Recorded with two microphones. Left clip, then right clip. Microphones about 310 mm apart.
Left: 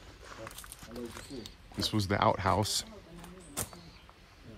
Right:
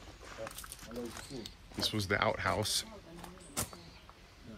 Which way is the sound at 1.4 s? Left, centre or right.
Centre.